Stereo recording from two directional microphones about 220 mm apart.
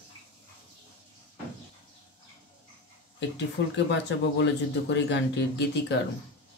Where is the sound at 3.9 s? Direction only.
50° left (ahead or behind).